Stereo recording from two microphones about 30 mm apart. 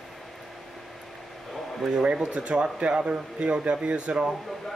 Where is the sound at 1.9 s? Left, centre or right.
Right.